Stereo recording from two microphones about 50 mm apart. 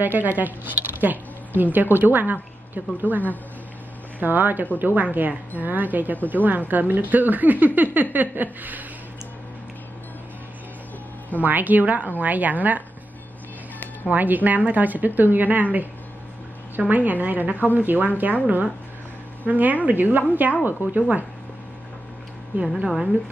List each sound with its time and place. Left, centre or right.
0.0 s a woman's voice: right
4.2 s speech: right
11.4 s speech: right
14.1 s speech: right
22.5 s speech: right